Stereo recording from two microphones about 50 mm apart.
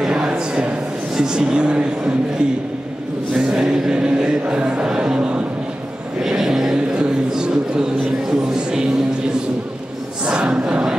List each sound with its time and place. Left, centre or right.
0.1 s a man's voice: centre
10.2 s choir: right
10.5 s speech: centre